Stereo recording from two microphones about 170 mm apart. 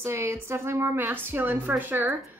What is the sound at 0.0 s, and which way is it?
A woman's voice, 15° right (ahead or behind).